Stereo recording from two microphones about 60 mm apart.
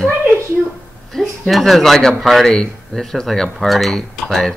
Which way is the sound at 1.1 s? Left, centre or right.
Centre.